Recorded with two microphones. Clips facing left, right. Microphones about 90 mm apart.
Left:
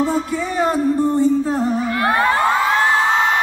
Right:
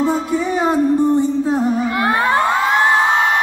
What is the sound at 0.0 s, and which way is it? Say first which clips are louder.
Music: right 2 dB; 20° right (ahead or behind).